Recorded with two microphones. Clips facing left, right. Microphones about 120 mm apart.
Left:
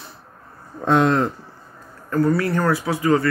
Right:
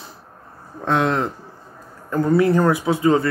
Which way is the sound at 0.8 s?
Centre (ahead or behind).